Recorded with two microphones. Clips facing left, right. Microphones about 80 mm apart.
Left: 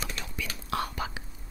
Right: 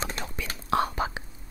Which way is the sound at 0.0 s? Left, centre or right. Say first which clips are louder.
Right 3 dB; right.